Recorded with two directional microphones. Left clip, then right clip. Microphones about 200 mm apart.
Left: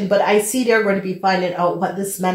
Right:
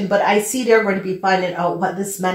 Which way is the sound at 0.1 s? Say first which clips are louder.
Left 1 dB; 40° left (ahead or behind).